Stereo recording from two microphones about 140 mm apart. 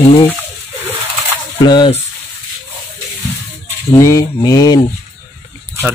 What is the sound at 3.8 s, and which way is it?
Mantra, 20° left (ahead or behind).